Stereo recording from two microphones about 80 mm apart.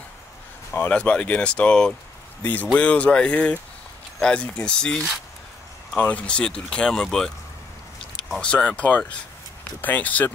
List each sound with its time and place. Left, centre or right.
0.7 s speech: left
2.4 s speech: left; by 7.3 s centre
8.4 s speech: centre